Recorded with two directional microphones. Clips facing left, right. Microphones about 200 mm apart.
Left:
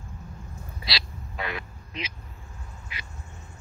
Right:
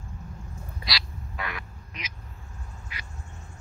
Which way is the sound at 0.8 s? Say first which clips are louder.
Left 1 dB; 25° left (ahead or behind).